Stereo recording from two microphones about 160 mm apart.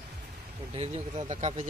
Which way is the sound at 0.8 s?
45° right (ahead or behind).